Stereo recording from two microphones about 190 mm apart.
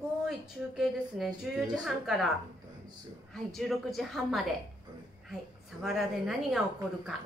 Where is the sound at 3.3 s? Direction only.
Centre (ahead or behind).